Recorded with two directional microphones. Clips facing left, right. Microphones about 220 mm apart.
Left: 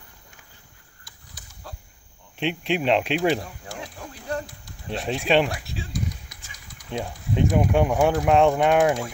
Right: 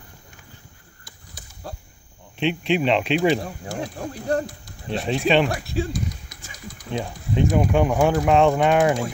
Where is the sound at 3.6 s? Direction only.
45° right (ahead or behind).